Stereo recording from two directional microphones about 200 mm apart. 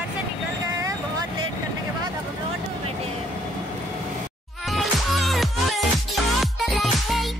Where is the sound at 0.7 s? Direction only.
15° right (ahead or behind).